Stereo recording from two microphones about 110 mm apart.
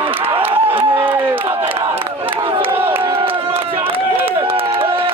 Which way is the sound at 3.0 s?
55° right (ahead or behind).